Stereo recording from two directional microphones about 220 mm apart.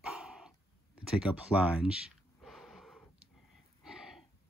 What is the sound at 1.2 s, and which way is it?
Speech, 5° right (ahead or behind).